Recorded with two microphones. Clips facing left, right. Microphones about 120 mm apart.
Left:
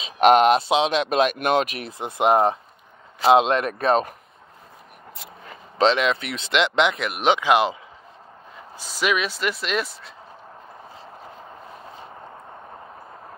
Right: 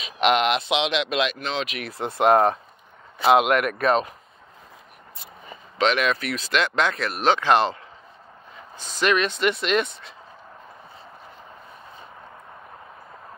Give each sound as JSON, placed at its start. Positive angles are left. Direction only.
{"t": 0.2, "sound": "speech", "side_deg": 40}
{"t": 1.9, "sound": "speech", "side_deg": 15}
{"t": 5.1, "sound": "a sound", "side_deg": 90}
{"t": 5.8, "sound": "speech", "side_deg": 25}
{"t": 8.7, "sound": "speech", "side_deg": 10}